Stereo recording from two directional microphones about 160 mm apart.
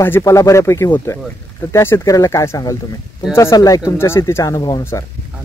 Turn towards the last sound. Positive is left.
turn(degrees=25)  # may be behind; listen again after turning